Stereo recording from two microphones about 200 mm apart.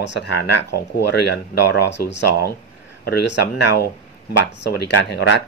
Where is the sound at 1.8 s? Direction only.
60° left (ahead or behind).